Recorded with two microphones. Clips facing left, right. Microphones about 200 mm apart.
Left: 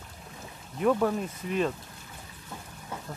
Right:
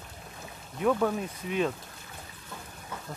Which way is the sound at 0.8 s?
Centre (ahead or behind).